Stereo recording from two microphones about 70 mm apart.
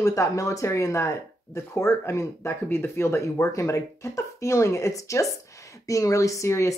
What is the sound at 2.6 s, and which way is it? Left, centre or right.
Speech, left.